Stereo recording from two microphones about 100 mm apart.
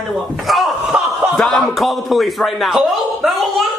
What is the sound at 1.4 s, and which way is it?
A man's voice, centre (ahead or behind).